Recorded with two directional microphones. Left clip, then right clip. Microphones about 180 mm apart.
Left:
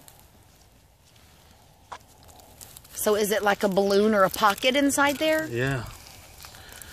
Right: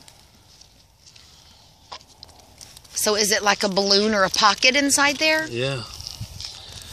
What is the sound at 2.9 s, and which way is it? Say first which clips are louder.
Speech: right 3 dB; 25° left (ahead or behind).